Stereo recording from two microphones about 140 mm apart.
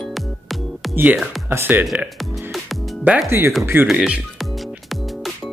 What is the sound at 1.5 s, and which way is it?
Speech, 15° right (ahead or behind).